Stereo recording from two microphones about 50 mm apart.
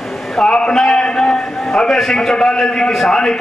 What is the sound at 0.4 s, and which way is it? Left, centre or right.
A man's voice, centre.